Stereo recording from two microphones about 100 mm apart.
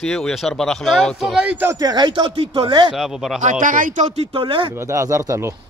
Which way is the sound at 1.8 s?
45° right (ahead or behind).